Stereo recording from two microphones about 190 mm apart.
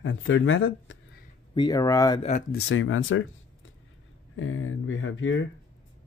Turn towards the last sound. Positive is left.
turn(degrees=90)